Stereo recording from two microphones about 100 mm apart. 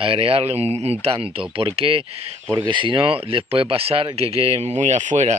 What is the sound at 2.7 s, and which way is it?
Speech, 55° right (ahead or behind).